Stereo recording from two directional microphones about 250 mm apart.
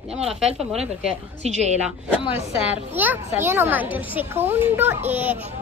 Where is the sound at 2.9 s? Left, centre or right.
Centre.